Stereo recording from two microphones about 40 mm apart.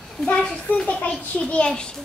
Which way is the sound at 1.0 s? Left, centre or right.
Left.